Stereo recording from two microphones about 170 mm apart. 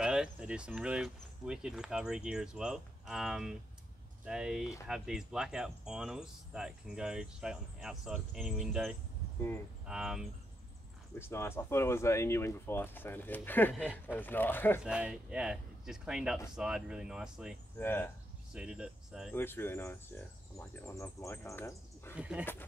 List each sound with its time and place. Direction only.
0.0 s speech: 5° right (ahead or behind)
11.1 s speech: 15° left (ahead or behind)
14.8 s speech: 5° right (ahead or behind)
17.7 s speech: 10° left (ahead or behind)
18.5 s speech: 5° right (ahead or behind)
19.3 s speech: 15° left (ahead or behind)
22.1 s speech: 5° right (ahead or behind)
22.4 s speech: 10° left (ahead or behind)